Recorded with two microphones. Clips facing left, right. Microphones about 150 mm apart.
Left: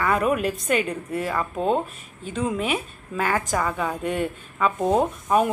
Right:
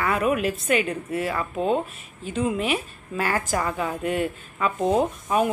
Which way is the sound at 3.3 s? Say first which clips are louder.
Left 1 dB; 10° right (ahead or behind).